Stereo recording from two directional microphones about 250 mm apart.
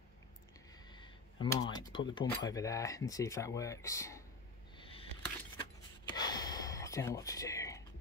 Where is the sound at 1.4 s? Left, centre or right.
Centre.